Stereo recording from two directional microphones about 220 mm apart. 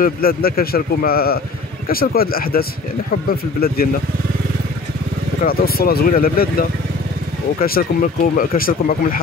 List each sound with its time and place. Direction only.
0.0 s a man's voice: 40° left (ahead or behind)
3.6 s a man's voice: 45° left (ahead or behind)
5.4 s speech: 40° left (ahead or behind)
7.6 s speech: 40° left (ahead or behind)